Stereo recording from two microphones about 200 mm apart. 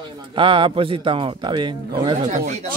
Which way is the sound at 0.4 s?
25° right (ahead or behind).